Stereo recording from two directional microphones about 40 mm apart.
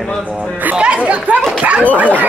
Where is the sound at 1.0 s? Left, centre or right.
Right.